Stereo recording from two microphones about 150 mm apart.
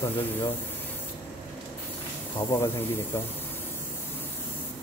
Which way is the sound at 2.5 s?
20° left (ahead or behind).